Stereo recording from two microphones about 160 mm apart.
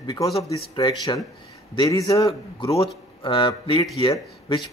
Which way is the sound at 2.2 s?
35° left (ahead or behind).